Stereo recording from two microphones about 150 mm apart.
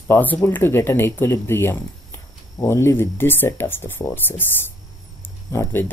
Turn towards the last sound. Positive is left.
turn(degrees=15)  # may be behind; listen again after turning